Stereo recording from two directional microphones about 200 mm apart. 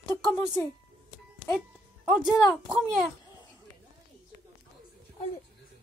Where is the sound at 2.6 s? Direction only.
Centre (ahead or behind).